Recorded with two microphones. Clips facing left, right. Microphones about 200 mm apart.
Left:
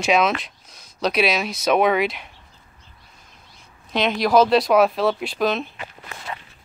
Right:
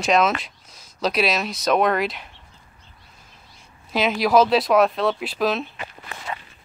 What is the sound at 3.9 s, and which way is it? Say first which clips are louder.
Speech: even; 5° right (ahead or behind).